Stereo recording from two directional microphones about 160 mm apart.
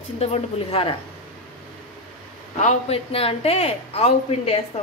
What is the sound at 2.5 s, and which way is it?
Speech, 40° left (ahead or behind).